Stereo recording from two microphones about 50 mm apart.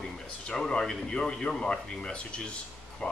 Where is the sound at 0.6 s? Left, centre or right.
Centre.